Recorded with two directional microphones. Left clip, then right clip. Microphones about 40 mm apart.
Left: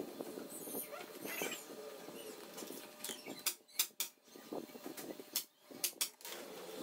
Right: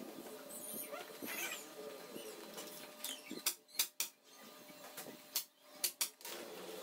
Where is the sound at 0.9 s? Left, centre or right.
Centre.